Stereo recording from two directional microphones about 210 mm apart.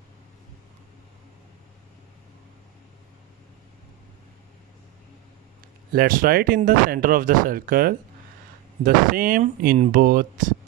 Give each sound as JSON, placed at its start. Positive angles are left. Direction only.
{"t": 5.9, "sound": "speech", "side_deg": -45}